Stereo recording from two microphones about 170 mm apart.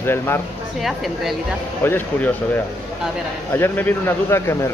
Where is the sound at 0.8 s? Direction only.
Centre (ahead or behind).